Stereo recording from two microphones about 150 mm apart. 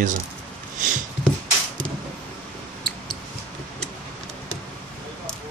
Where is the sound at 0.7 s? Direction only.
55° right (ahead or behind).